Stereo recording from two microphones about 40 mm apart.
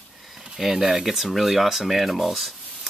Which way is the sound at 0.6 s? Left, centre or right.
Centre.